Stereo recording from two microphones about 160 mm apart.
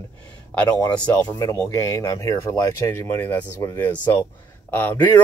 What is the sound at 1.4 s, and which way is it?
Speech, 20° left (ahead or behind).